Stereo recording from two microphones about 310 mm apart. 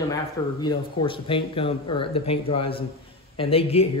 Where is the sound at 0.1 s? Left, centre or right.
Centre.